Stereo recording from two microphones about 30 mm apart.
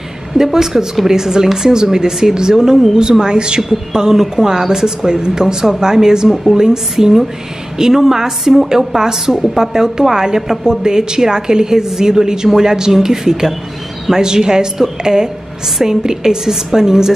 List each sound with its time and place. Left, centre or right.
0.4 s a woman's voice: centre
4.1 s speech: centre
6.2 s speech: centre
6.5 s a woman's voice: right